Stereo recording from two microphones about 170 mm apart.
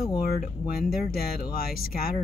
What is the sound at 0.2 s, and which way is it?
Speech, 60° left (ahead or behind).